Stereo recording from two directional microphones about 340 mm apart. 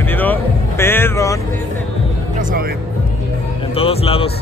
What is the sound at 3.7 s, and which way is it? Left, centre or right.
Music, centre.